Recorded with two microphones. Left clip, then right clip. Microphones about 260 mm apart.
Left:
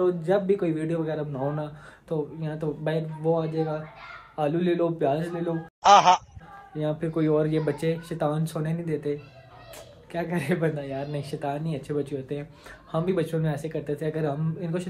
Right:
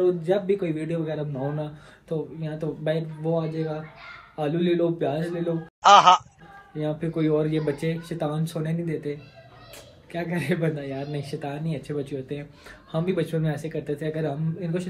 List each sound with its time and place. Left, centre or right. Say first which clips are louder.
0.0 s a man's voice: right 1 dB; centre
10.1 s a man's voice: even; centre